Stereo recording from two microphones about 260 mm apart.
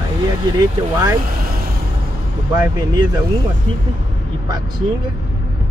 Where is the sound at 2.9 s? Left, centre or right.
Centre.